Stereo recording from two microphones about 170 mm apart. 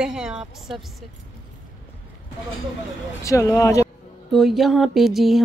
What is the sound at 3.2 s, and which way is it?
Speech, 20° left (ahead or behind).